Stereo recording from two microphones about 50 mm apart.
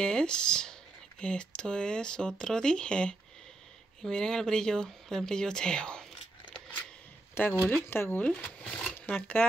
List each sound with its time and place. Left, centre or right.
0.0 s speech: centre
7.4 s speech: left
8.3 s speech: left